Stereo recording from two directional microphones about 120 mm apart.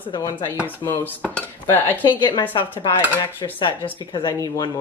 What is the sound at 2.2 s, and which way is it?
Speech, 40° left (ahead or behind).